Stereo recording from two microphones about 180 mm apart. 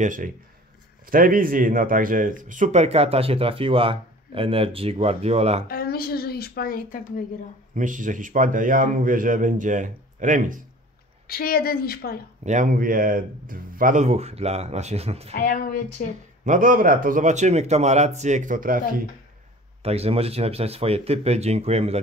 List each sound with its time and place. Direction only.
0.0 s a man's voice: 45° right (ahead or behind)
5.7 s a woman's voice: 55° left (ahead or behind)
7.7 s a man's voice: 45° right (ahead or behind)
11.2 s a woman's voice: 55° left (ahead or behind)
12.4 s speech: 45° right (ahead or behind)
15.3 s speech: 50° left (ahead or behind)
16.4 s a man's voice: 50° right (ahead or behind)
19.8 s speech: 35° right (ahead or behind)